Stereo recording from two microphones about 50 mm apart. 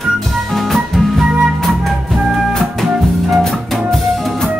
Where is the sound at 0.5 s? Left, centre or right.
Centre.